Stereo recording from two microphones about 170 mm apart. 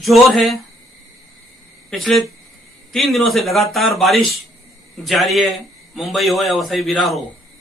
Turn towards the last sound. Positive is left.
turn(degrees=0)  # may be behind; listen again after turning